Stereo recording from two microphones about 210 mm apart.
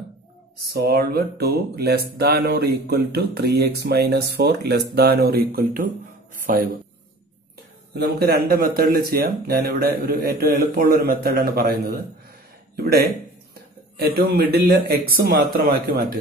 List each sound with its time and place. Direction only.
0.6 s speech: 50° right (ahead or behind)
7.9 s speech: 50° right (ahead or behind)
12.7 s speech: 50° right (ahead or behind)